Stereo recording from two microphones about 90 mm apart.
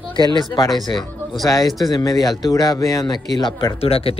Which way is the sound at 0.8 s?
60° left (ahead or behind).